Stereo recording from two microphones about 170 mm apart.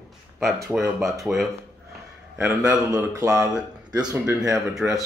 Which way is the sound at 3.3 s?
5° right (ahead or behind).